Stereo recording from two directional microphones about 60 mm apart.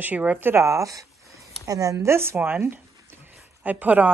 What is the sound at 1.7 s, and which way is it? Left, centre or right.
Speech, right.